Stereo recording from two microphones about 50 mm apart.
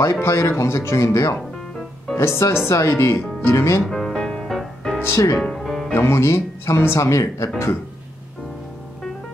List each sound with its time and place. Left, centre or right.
0.0 s speech: left
2.1 s speech: left
3.9 s music: centre
5.1 s speech: left
5.4 s music: centre
5.9 s speech: left